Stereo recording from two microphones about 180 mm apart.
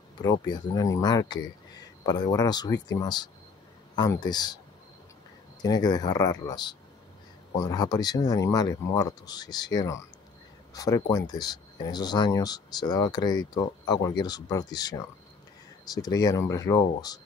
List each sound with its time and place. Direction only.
0.2 s speech: 20° left (ahead or behind)
5.6 s speech: 20° left (ahead or behind)